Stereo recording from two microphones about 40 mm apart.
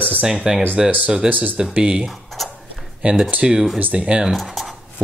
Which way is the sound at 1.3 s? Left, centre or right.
Right.